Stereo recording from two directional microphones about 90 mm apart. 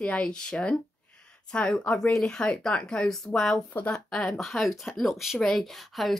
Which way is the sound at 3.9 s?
10° left (ahead or behind).